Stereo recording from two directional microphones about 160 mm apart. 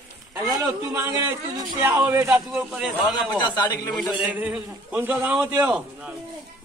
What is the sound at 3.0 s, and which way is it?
Speech, 25° left (ahead or behind).